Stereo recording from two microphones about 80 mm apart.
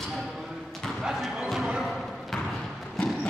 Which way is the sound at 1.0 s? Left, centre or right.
Centre.